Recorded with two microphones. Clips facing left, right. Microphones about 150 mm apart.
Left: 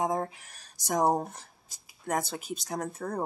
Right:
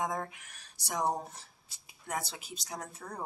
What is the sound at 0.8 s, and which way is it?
A woman's voice, 45° left (ahead or behind).